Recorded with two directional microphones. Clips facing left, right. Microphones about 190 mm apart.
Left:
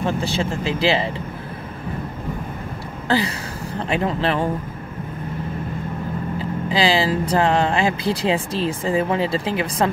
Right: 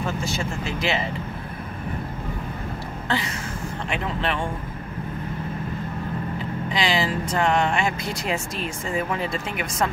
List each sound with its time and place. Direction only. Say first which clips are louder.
0.0 s speech: left 5 dB; 30° left (ahead or behind)
3.1 s a sound: left 7 dB; 35° left (ahead or behind)
3.9 s speech: left 6 dB; 35° left (ahead or behind)
6.7 s speech: left 5 dB; 30° left (ahead or behind)